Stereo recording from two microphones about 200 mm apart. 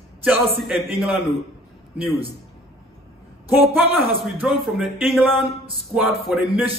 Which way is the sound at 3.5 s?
10° right (ahead or behind).